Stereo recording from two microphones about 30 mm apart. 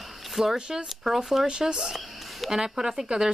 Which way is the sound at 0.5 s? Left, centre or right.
Right.